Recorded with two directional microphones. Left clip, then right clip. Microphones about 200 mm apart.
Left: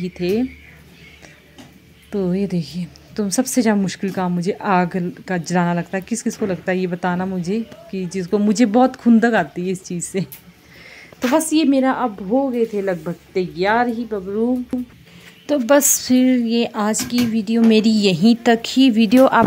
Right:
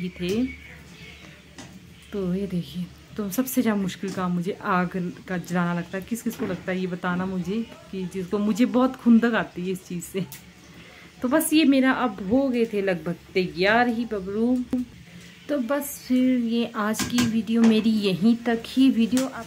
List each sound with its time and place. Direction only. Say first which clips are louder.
0.0 s speech: left 8 dB; 25° left (ahead or behind)
2.0 s a woman's voice: left 7 dB; 30° left (ahead or behind); by 14.8 s centre (ahead or behind)
15.4 s speech: left 11 dB; 35° left (ahead or behind)